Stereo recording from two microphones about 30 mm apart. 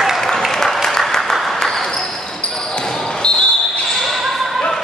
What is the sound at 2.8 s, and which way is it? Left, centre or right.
Basketball bounce, centre.